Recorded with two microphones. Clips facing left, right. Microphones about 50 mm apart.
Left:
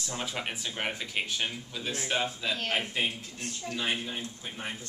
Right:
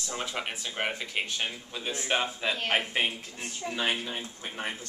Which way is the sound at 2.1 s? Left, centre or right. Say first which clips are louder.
Right 3 dB; right.